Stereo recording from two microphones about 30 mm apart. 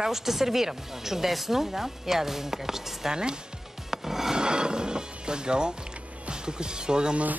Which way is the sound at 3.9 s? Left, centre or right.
Centre.